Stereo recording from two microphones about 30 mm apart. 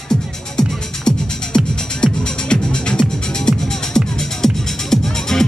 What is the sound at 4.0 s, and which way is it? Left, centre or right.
Music, centre.